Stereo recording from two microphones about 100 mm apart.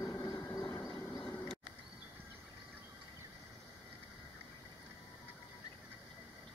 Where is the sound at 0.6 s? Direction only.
40° left (ahead or behind).